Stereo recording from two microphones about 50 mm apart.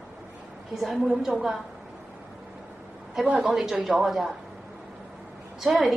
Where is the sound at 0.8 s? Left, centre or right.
Centre.